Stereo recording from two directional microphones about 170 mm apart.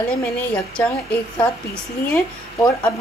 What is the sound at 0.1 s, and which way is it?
A woman's voice, 5° left (ahead or behind).